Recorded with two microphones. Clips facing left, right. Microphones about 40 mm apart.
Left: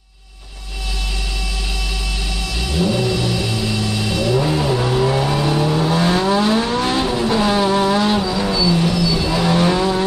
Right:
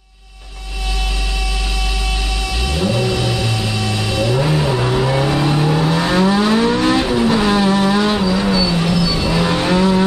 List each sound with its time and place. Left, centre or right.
2.8 s vehicle: centre
3.5 s vehicle: right